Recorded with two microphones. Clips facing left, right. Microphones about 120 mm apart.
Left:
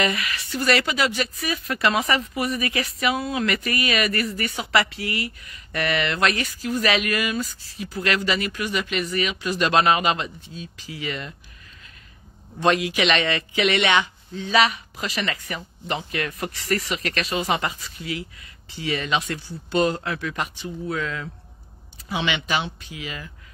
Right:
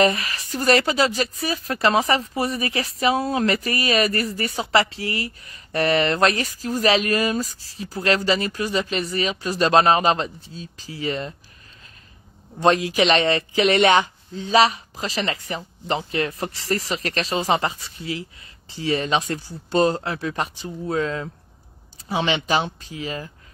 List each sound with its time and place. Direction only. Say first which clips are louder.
0.0 s speech: right 5 dB; 35° right (ahead or behind)
12.5 s speech: right 3 dB; 35° right (ahead or behind)